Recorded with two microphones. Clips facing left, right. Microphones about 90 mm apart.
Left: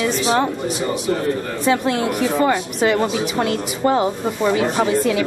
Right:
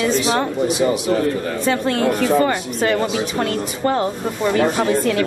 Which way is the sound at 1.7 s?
15° left (ahead or behind).